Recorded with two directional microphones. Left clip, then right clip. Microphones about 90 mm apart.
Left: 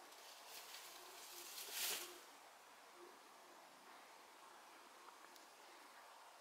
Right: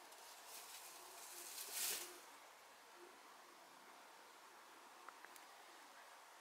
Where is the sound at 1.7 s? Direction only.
15° left (ahead or behind).